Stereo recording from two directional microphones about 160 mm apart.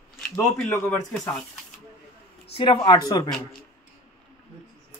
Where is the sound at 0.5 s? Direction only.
5° left (ahead or behind).